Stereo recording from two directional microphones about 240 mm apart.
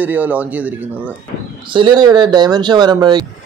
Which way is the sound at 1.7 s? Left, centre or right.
Centre.